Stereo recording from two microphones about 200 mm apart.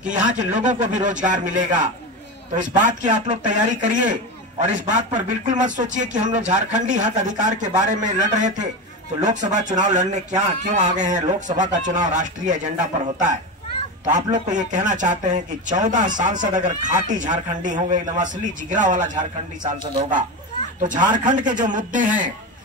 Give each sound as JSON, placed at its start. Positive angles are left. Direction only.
{"t": 0.0, "sound": "speech", "side_deg": -40}
{"t": 20.8, "sound": "speech", "side_deg": -40}